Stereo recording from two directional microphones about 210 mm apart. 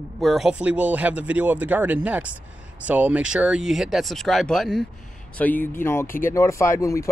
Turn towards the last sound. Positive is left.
turn(degrees=15)  # may be behind; listen again after turning